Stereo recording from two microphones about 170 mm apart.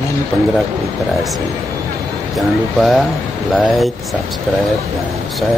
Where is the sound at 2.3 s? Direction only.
Centre (ahead or behind).